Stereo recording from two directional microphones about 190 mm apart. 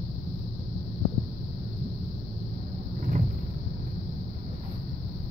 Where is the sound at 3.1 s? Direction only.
40° right (ahead or behind).